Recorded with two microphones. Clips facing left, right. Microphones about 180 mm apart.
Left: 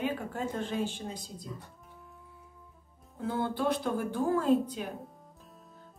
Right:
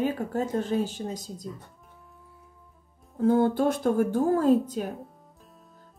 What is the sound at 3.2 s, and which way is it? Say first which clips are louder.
A woman's voice: right 9 dB; 45° right (ahead or behind).